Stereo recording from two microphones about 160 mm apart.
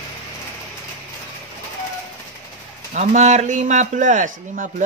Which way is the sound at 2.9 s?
45° right (ahead or behind).